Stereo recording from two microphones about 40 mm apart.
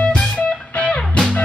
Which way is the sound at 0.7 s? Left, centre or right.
Left.